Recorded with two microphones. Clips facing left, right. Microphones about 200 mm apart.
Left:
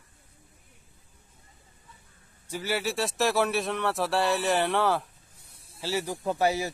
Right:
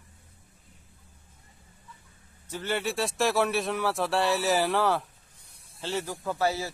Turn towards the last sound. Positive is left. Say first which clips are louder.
# left 2 dB
turn(degrees=15)  # may be behind; listen again after turning